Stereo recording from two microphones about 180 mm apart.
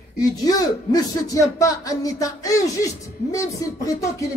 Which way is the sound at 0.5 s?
20° left (ahead or behind).